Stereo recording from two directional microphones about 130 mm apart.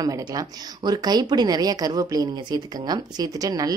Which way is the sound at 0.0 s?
30° right (ahead or behind).